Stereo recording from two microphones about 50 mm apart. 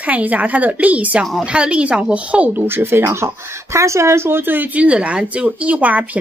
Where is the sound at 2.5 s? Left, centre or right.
Right.